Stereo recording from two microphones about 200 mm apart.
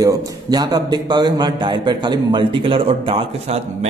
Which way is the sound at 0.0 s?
20° right (ahead or behind).